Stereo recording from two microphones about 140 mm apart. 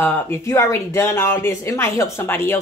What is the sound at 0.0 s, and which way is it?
Speech, 15° left (ahead or behind).